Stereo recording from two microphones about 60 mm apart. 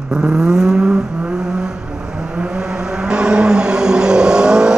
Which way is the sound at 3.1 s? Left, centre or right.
Centre.